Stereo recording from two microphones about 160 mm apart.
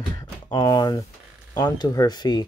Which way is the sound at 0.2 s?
25° left (ahead or behind).